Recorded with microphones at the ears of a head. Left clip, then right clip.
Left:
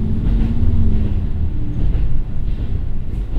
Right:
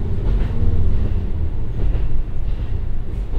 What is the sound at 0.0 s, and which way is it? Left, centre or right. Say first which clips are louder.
Vehicle: left 5 dB; left.